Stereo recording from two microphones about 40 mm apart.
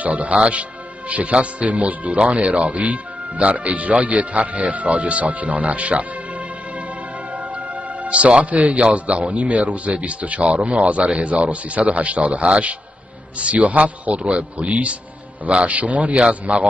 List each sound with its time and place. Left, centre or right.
0.0 s a man's voice: right
7.3 s music: right
8.4 s a man's voice: right